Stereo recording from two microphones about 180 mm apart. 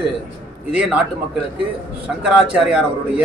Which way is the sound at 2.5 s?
5° right (ahead or behind).